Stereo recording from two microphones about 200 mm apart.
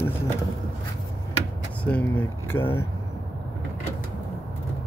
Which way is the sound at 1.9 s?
10° left (ahead or behind).